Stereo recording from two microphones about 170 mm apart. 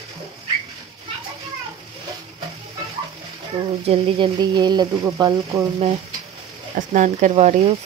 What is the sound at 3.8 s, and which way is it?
Speech, 35° right (ahead or behind).